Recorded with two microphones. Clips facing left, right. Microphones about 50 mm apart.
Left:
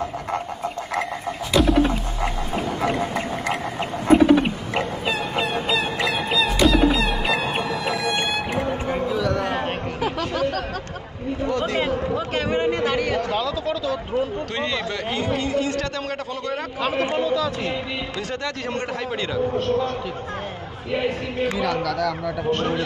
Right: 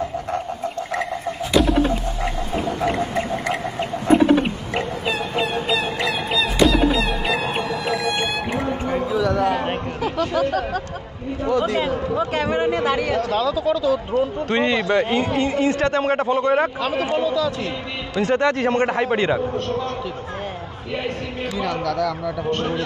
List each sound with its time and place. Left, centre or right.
5.4 s fowl: centre
8.8 s basketball bounce: centre
9.9 s a sound: centre
11.4 s speech: centre
13.2 s speech: centre
13.5 s speech: centre
14.5 s a man's voice: right
16.8 s speech: centre
18.1 s a man's voice: right
19.5 s speech: centre
20.9 s speech: centre